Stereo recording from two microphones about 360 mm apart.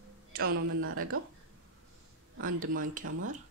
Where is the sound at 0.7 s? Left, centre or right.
Right.